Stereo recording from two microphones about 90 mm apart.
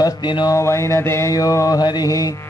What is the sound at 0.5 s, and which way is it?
Music, 35° left (ahead or behind).